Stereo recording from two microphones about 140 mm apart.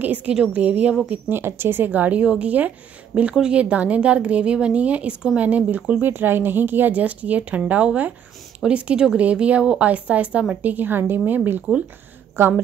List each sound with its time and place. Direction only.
0.0 s speech: 10° right (ahead or behind)